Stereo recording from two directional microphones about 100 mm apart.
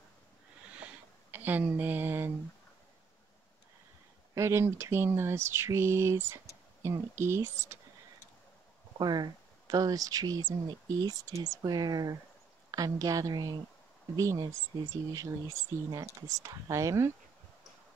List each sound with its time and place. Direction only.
1.3 s speech: 20° right (ahead or behind)
4.4 s speech: 25° right (ahead or behind)
8.9 s speech: 45° right (ahead or behind)